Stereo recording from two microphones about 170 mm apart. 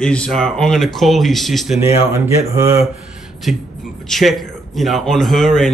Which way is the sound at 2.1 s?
15° right (ahead or behind).